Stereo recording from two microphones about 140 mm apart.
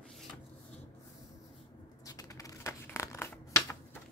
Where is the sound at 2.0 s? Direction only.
25° left (ahead or behind).